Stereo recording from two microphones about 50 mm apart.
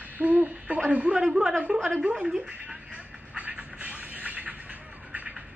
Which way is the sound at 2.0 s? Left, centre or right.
Centre.